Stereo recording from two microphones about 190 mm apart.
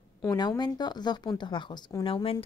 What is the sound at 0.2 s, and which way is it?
Speech, 20° left (ahead or behind).